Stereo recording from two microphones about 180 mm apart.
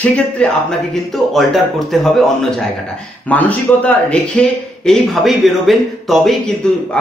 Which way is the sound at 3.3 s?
10° left (ahead or behind).